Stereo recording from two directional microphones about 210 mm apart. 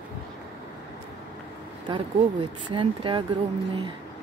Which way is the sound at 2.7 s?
25° right (ahead or behind).